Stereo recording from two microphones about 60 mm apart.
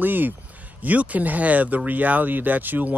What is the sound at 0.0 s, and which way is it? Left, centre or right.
Speech, right.